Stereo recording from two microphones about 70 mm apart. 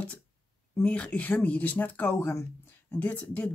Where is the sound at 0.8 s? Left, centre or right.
Centre.